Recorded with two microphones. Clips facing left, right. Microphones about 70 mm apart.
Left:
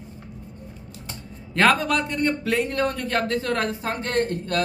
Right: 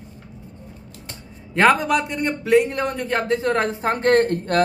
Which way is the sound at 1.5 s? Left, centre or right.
Centre.